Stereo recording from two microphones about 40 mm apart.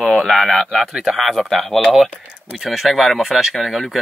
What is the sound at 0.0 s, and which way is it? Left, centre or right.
A man's voice, centre.